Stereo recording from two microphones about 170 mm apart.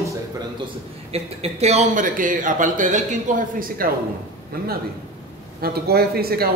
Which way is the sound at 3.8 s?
60° right (ahead or behind).